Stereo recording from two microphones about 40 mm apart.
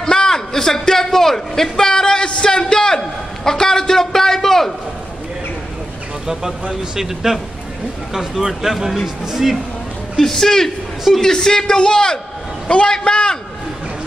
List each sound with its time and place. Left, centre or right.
0.0 s a sound: centre
6.2 s speech: centre
10.1 s a man's voice: centre